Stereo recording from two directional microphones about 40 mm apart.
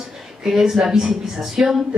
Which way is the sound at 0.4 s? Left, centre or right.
Centre.